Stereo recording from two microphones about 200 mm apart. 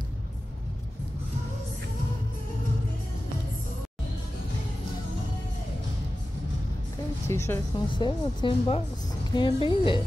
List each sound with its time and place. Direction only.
7.2 s speech: 15° left (ahead or behind)
7.9 s speech: 25° left (ahead or behind)